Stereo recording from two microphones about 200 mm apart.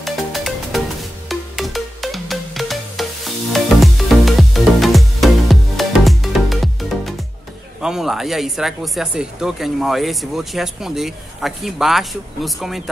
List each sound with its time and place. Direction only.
0.0 s music: centre (ahead or behind)
7.8 s speech: centre (ahead or behind)